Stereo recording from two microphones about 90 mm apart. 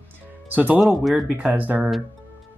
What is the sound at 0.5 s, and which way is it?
Speech, 15° right (ahead or behind).